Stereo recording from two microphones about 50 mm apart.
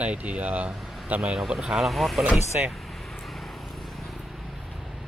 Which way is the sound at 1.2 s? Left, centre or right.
Centre.